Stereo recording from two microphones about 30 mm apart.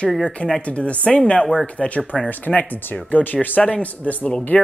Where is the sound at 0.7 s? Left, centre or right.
Left.